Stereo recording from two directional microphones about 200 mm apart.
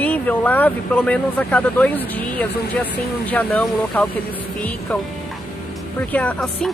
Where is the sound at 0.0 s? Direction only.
10° left (ahead or behind).